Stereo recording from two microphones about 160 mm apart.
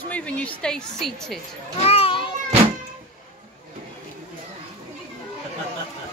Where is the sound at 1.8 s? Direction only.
35° left (ahead or behind).